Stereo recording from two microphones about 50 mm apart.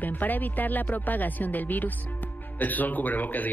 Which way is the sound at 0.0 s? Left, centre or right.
Left.